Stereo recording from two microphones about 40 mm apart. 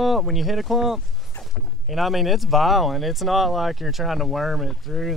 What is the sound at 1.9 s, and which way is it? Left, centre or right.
Speech, centre.